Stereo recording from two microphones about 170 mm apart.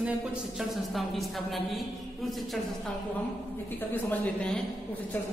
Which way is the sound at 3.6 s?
10° left (ahead or behind).